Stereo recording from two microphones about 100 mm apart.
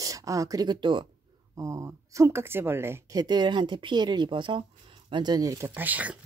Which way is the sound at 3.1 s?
45° right (ahead or behind).